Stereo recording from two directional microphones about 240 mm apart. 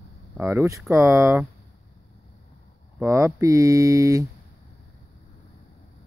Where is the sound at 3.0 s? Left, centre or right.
Centre.